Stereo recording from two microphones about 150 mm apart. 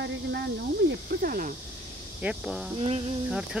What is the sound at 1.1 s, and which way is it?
Speech, 75° right (ahead or behind).